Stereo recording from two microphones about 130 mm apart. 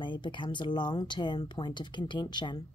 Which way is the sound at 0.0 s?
40° left (ahead or behind).